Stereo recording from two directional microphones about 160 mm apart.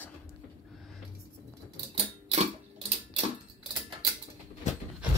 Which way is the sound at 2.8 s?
40° right (ahead or behind).